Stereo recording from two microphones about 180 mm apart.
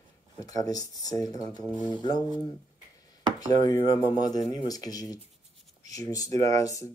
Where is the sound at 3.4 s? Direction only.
20° left (ahead or behind).